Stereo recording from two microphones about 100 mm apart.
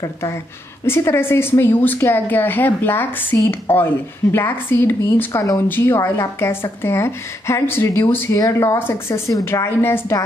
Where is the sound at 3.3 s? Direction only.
30° left (ahead or behind).